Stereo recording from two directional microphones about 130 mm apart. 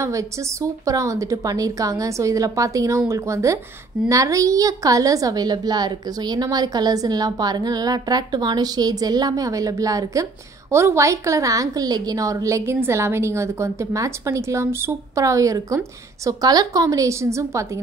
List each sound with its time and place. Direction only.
0.0 s a woman's voice: 25° right (ahead or behind)